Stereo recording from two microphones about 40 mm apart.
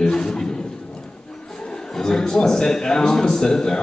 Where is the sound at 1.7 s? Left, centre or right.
Centre.